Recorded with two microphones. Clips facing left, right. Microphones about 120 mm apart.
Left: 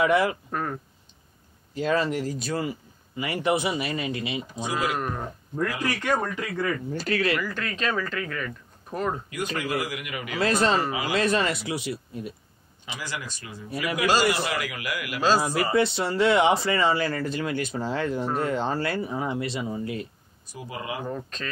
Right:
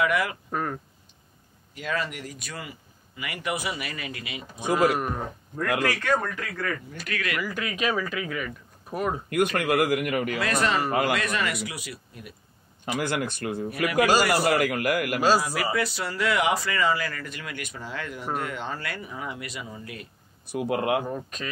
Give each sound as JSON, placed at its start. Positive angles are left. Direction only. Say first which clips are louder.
{"t": 0.0, "sound": "speech", "louder": "left 4 dB", "side_deg": 30}
{"t": 0.5, "sound": "speech", "louder": "even", "side_deg": 0}
{"t": 1.7, "sound": "speech", "louder": "left 6 dB", "side_deg": 30}
{"t": 6.0, "sound": "speech", "louder": "even", "side_deg": 15}
{"t": 6.9, "sound": "speech", "louder": "left 7 dB", "side_deg": 30}
{"t": 7.3, "sound": "speech", "louder": "even", "side_deg": -10}
{"t": 9.3, "sound": "a man's voice", "louder": "right 5 dB", "side_deg": -60}
{"t": 10.4, "sound": "speech", "louder": "left 6 dB", "side_deg": 30}
{"t": 10.9, "sound": "speech", "louder": "right 5 dB", "side_deg": -55}
{"t": 11.1, "sound": "speech", "louder": "left 4 dB", "side_deg": 30}
{"t": 12.8, "sound": "a man's voice", "louder": "right 8 dB", "side_deg": -55}
{"t": 15.4, "sound": "speech", "louder": "left 4 dB", "side_deg": 25}
{"t": 20.4, "sound": "speech", "louder": "right 9 dB", "side_deg": -65}
{"t": 21.0, "sound": "speech", "louder": "even", "side_deg": -10}